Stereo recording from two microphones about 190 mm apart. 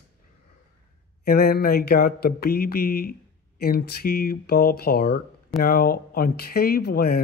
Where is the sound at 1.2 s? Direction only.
50° left (ahead or behind).